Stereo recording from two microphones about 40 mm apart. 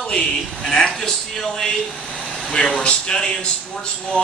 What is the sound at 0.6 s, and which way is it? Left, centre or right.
A man's voice, centre.